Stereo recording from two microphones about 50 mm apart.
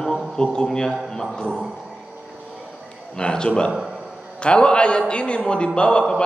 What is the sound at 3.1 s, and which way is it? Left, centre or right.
A man's voice, centre.